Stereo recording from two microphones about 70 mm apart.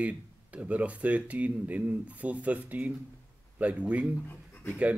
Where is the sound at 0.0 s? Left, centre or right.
Centre.